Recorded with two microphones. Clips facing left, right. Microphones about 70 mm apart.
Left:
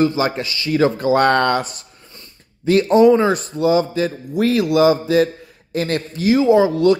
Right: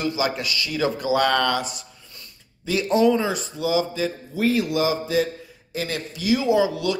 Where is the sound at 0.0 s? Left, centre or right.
Left.